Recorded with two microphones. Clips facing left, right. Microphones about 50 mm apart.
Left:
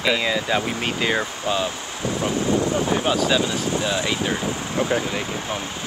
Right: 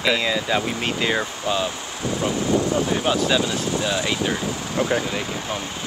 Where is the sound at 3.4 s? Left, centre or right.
Left.